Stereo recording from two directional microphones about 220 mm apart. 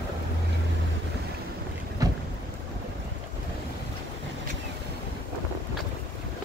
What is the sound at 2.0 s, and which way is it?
Boat, 15° right (ahead or behind).